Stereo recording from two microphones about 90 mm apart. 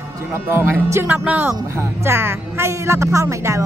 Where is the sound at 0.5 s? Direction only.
30° right (ahead or behind).